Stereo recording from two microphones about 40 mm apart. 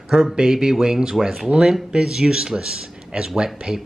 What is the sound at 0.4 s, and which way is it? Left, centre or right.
Speech, centre.